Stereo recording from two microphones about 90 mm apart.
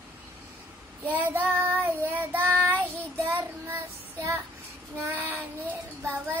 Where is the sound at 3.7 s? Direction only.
30° right (ahead or behind).